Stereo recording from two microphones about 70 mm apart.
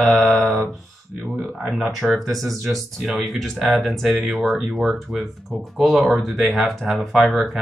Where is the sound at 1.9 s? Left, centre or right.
Centre.